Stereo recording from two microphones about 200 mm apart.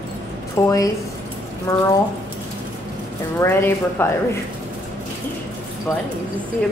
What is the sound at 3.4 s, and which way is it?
Speech, 10° left (ahead or behind).